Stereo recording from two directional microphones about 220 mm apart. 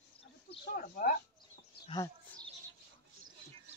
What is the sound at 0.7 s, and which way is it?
Speech, 40° left (ahead or behind).